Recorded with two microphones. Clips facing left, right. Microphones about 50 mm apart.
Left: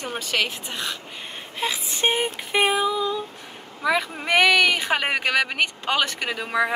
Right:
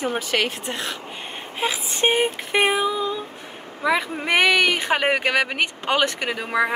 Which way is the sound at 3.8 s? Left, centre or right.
Centre.